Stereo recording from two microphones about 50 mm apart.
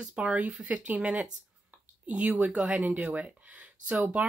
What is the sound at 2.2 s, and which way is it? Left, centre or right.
Speech, right.